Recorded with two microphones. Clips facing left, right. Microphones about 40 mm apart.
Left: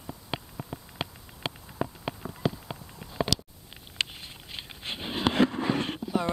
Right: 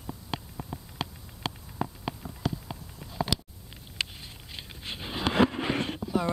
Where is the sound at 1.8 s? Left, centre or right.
Centre.